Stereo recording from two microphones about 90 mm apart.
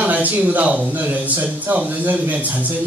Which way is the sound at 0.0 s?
15° right (ahead or behind).